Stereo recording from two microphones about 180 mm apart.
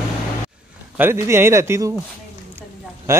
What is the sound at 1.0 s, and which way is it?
Speech, 15° right (ahead or behind).